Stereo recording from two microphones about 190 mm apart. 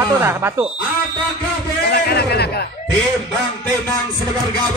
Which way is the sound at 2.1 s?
55° left (ahead or behind).